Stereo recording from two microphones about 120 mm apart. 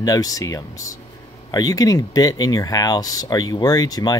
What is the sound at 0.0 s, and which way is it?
Speech, 30° left (ahead or behind).